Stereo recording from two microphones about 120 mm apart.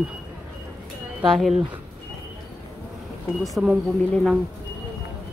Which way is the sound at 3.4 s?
5° right (ahead or behind).